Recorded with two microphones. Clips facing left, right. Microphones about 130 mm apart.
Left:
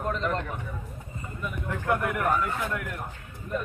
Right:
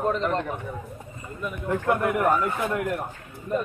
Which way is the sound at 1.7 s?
30° right (ahead or behind).